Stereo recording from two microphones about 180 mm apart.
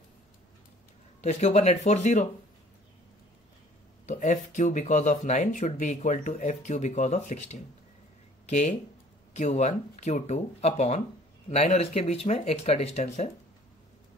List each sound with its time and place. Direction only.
1.2 s speech: 35° left (ahead or behind)
4.0 s speech: 40° left (ahead or behind)